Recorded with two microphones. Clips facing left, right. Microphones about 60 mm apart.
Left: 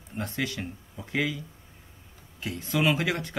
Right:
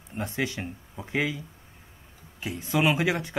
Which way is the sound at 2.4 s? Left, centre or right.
Centre.